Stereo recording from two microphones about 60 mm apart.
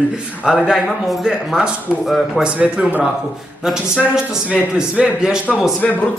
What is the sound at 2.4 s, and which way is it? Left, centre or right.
Speech, right.